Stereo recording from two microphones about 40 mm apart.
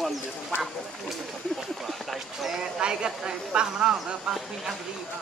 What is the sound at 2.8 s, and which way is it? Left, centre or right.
Speech, right.